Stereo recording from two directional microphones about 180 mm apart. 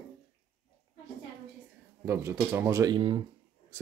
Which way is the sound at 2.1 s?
15° right (ahead or behind).